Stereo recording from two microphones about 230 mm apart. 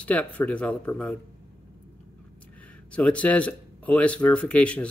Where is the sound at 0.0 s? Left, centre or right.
Centre.